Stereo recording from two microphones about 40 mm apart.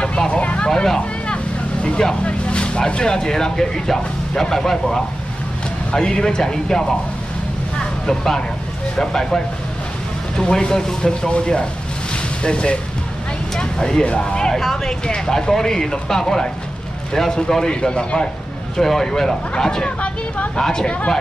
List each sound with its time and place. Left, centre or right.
0.3 s vehicle: left
0.7 s vehicle: centre
2.2 s speech: left; by 5.0 s centre
5.9 s speech: left
7.8 s vehicle: centre
8.9 s speech: centre
12.1 s boat: left
13.6 s a sound: centre
14.0 s speech: left
14.3 s speech: centre
18.8 s speech: centre